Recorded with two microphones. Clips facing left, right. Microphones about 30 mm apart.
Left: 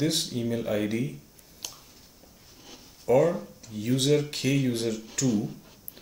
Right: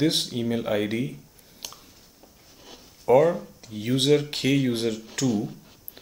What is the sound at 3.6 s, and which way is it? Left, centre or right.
Speech, right.